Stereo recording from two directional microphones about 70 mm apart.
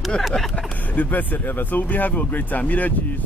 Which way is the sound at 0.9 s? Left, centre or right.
Left.